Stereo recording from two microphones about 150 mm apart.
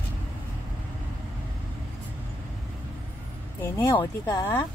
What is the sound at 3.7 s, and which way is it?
Speech, 20° left (ahead or behind).